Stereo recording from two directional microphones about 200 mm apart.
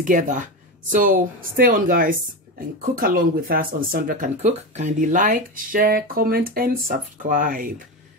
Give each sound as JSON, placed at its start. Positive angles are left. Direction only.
{"t": 0.0, "sound": "speech", "side_deg": -40}